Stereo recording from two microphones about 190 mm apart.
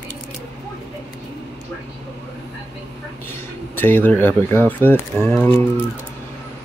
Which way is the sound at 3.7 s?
10° left (ahead or behind).